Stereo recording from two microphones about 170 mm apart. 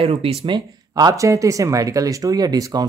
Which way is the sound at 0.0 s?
35° right (ahead or behind).